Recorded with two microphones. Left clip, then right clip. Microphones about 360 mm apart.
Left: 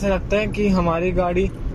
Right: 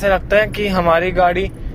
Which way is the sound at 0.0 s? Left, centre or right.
Right.